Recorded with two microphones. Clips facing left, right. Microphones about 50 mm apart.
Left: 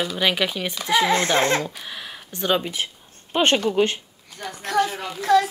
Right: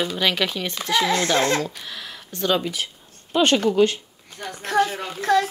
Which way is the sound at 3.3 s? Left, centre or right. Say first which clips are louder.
Right 1 dB; left.